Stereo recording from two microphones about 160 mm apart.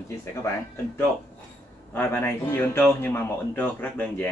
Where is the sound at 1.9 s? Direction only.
15° left (ahead or behind).